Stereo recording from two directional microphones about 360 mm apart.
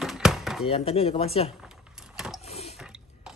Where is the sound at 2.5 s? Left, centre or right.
Centre.